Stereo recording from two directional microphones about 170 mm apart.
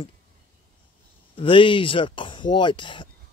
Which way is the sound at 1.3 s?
30° left (ahead or behind).